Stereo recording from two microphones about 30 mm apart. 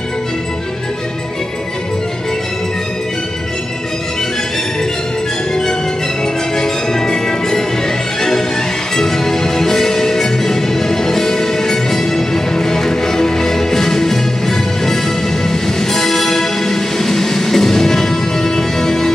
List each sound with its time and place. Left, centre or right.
6.5 s music: centre
15.4 s music: centre